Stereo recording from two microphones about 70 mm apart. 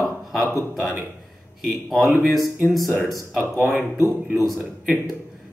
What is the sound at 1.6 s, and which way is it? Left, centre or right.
Speech, centre.